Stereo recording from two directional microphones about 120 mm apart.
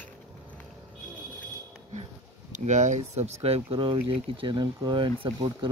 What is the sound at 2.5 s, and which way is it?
Speech, 80° right.